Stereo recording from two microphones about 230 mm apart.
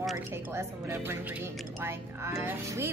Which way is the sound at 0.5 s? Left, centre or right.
Centre.